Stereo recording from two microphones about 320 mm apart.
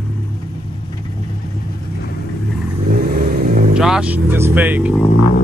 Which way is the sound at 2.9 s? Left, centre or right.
Right.